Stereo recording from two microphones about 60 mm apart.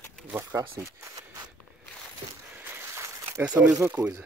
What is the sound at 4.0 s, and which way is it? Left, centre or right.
Speech, right.